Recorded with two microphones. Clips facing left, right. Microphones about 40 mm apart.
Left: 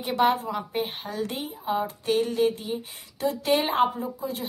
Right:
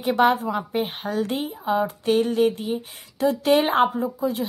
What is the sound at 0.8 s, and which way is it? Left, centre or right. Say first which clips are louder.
Speech: right 5 dB; right.